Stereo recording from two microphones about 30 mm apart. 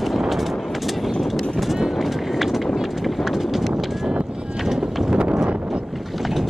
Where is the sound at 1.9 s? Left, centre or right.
Centre.